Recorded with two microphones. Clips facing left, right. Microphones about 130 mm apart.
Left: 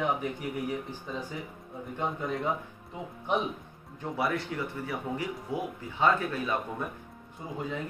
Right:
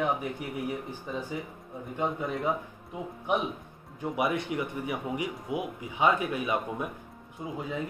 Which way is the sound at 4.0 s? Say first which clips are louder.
Right 2 dB; 15° right (ahead or behind).